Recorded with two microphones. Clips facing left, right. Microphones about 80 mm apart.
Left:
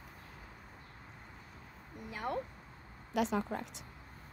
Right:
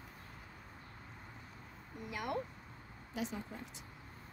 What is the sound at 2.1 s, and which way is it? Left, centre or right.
Speech, left.